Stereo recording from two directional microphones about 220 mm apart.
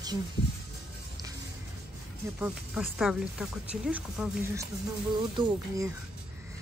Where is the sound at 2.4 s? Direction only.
5° right (ahead or behind).